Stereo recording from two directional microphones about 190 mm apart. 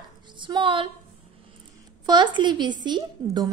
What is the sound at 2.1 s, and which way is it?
A woman's voice, 25° right (ahead or behind).